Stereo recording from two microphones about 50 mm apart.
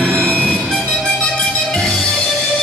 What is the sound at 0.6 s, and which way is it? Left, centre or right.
Music, centre.